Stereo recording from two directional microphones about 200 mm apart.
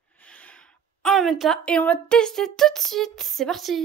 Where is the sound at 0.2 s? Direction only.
5° left (ahead or behind).